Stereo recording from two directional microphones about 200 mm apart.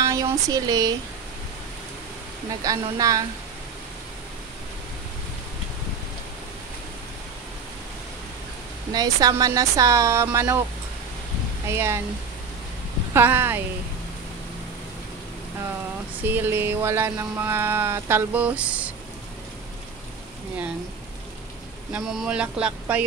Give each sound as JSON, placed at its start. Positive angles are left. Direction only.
{"t": 0.0, "sound": "a sound", "side_deg": -20}
{"t": 2.6, "sound": "speech", "side_deg": -15}
{"t": 8.9, "sound": "speech", "side_deg": -20}
{"t": 11.7, "sound": "speech", "side_deg": -10}
{"t": 13.1, "sound": "speech", "side_deg": -10}
{"t": 16.3, "sound": "speech", "side_deg": -10}
{"t": 21.9, "sound": "speech", "side_deg": -5}